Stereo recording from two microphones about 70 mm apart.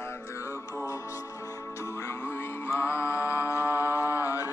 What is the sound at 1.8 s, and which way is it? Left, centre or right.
Music, left.